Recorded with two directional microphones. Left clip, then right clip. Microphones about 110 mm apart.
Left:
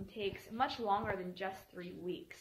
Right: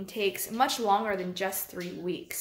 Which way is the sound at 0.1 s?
10° right (ahead or behind).